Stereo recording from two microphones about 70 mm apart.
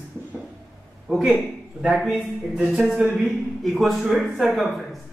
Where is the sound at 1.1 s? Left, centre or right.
Centre.